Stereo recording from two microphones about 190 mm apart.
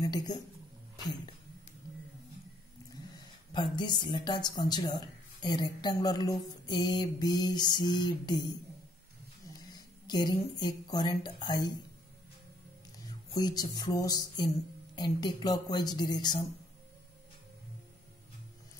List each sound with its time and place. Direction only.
0.0 s speech: 20° left (ahead or behind)
3.5 s speech: 25° left (ahead or behind)
10.0 s speech: 20° left (ahead or behind)
13.3 s speech: 20° left (ahead or behind)